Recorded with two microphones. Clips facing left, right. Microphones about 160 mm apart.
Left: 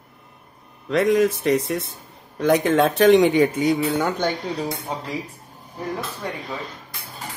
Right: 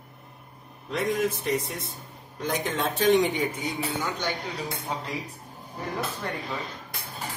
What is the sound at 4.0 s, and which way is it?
Speech, 60° left (ahead or behind).